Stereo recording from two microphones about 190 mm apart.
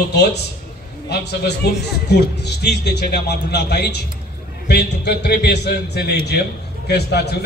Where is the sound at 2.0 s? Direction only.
60° left (ahead or behind).